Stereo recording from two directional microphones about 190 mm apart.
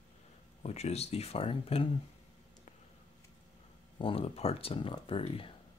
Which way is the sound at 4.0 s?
30° left (ahead or behind).